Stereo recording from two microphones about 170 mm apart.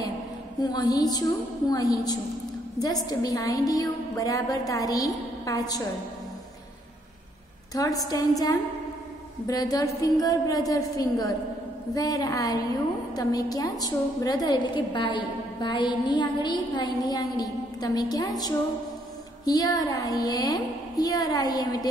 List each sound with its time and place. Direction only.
0.6 s a woman's voice: 25° left (ahead or behind)
7.7 s a woman's voice: 20° left (ahead or behind)